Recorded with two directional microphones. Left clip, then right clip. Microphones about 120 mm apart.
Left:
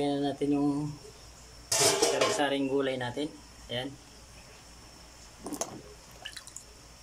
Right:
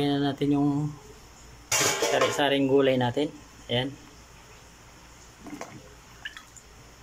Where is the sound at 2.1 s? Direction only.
Centre (ahead or behind).